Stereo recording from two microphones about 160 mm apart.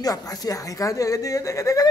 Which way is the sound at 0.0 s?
25° left (ahead or behind).